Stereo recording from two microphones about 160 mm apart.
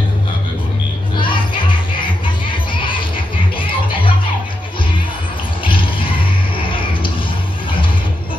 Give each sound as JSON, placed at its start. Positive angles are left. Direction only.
{"t": 1.1, "sound": "music", "side_deg": 30}
{"t": 5.6, "sound": "music", "side_deg": 30}